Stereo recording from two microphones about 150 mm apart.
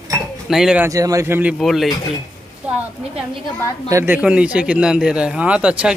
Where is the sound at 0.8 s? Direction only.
20° right (ahead or behind).